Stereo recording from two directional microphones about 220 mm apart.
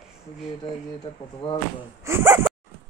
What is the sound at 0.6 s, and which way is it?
Speech, 20° left (ahead or behind).